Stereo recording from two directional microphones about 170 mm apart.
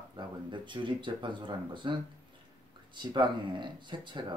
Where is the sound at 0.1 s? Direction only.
30° right (ahead or behind).